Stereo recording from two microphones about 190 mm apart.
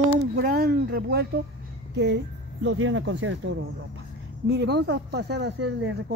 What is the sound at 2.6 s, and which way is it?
Speech, 75° right (ahead or behind).